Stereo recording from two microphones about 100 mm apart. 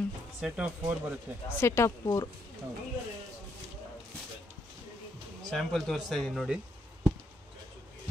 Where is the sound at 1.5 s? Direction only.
25° left (ahead or behind).